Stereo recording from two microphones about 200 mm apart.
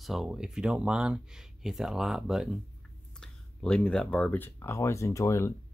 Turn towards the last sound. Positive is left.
turn(degrees=15)  # may be behind; listen again after turning